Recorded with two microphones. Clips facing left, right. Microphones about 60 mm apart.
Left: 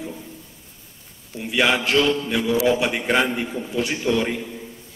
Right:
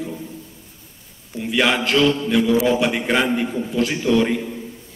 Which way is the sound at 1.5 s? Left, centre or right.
Centre.